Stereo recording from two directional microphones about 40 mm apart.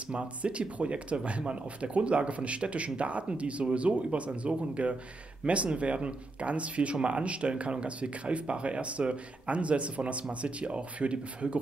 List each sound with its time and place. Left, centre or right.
0.1 s speech: right